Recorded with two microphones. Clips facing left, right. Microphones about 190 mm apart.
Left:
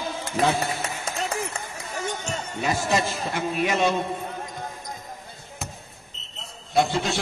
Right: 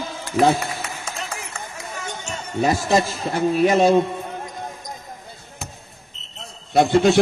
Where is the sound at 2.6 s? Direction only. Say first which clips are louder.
Right 6 dB; 35° right (ahead or behind).